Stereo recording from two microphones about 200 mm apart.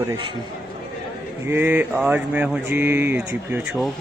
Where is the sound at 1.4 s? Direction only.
10° right (ahead or behind).